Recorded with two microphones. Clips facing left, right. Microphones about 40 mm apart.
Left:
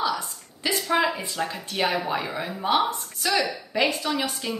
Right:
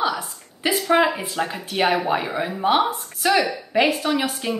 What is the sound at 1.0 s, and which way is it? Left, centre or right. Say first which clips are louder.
A woman's voice: right 4 dB; centre.